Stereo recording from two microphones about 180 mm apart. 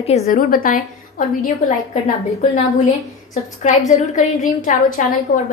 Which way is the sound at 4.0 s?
45° left (ahead or behind).